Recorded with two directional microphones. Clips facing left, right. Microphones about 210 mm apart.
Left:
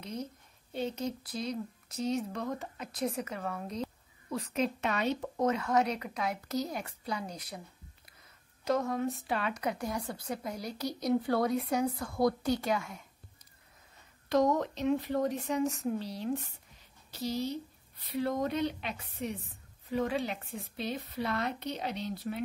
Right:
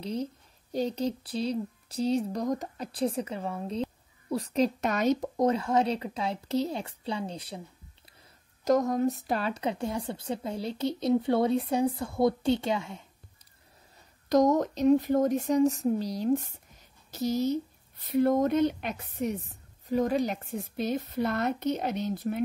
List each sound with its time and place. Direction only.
0.0 s a woman's voice: 30° right (ahead or behind)
8.6 s a woman's voice: 40° right (ahead or behind); by 13.0 s 25° right (ahead or behind)
14.3 s speech: 45° right (ahead or behind)